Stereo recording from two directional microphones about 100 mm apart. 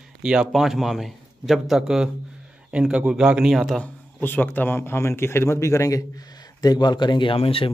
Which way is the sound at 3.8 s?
20° left (ahead or behind).